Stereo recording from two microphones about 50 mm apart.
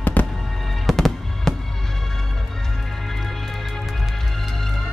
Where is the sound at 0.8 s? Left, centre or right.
Centre.